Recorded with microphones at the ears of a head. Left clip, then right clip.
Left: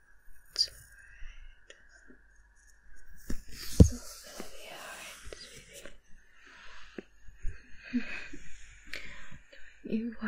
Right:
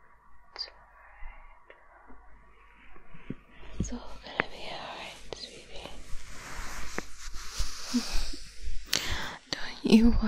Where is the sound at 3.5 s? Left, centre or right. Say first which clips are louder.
Left 16 dB; left.